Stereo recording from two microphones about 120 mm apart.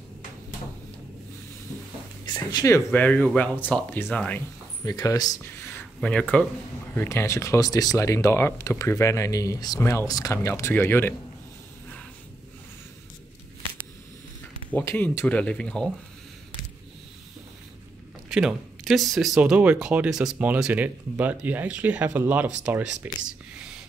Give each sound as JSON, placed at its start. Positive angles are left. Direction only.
{"t": 2.2, "sound": "speech", "side_deg": 35}
{"t": 2.9, "sound": "speech", "side_deg": 15}
{"t": 4.8, "sound": "speech", "side_deg": 30}
{"t": 5.4, "sound": "a sound", "side_deg": 15}
{"t": 5.9, "sound": "speech", "side_deg": 5}
{"t": 7.0, "sound": "speech", "side_deg": 20}
{"t": 14.7, "sound": "speech", "side_deg": 15}
{"t": 18.3, "sound": "speech", "side_deg": -5}